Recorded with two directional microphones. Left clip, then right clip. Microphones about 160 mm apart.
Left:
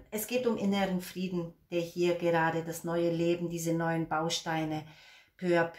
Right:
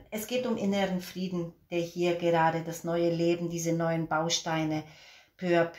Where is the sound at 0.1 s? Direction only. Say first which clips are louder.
Even; 25° right (ahead or behind).